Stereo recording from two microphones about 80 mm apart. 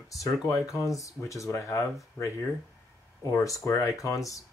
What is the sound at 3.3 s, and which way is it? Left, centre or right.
Speech, left.